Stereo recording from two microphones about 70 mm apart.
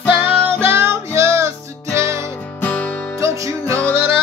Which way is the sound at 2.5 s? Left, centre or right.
Left.